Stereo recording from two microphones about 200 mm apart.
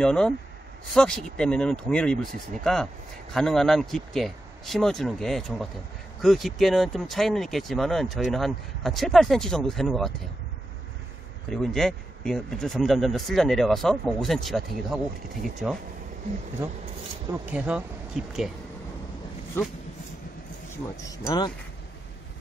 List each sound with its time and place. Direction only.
0.0 s speech: 5° left (ahead or behind)
11.5 s speech: 5° left (ahead or behind)
16.6 s speech: 10° right (ahead or behind)
20.7 s speech: 20° left (ahead or behind)